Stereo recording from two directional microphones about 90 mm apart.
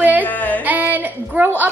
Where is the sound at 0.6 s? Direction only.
20° right (ahead or behind).